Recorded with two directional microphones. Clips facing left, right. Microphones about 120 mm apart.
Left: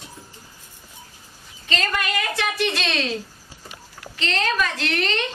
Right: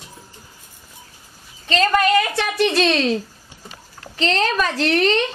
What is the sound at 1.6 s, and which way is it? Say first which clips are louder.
A woman's voice: right 9 dB; 35° right (ahead or behind).